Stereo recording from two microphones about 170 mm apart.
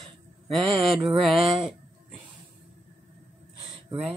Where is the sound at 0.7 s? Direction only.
Centre (ahead or behind).